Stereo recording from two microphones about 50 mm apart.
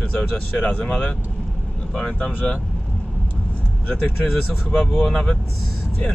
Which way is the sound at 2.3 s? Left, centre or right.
Left.